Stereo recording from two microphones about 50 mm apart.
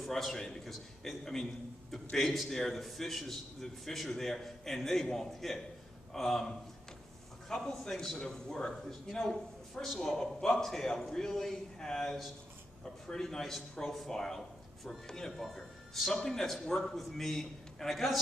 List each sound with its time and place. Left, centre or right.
0.0 s a man's voice: centre